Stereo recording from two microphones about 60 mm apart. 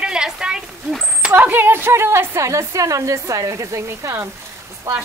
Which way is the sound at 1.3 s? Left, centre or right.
Right.